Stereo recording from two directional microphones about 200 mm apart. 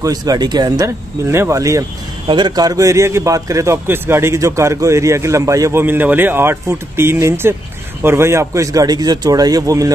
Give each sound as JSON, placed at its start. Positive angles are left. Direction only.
{"t": 0.0, "sound": "speech", "side_deg": -20}